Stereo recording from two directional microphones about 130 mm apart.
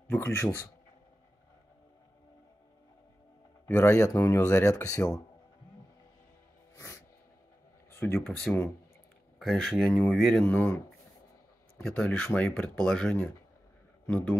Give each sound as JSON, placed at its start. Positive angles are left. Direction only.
{"t": 0.1, "sound": "speech", "side_deg": 15}
{"t": 3.6, "sound": "speech", "side_deg": 20}
{"t": 6.7, "sound": "music", "side_deg": 20}
{"t": 7.9, "sound": "a sound", "side_deg": 15}
{"t": 8.3, "sound": "speech", "side_deg": 5}
{"t": 11.8, "sound": "a man's voice", "side_deg": 5}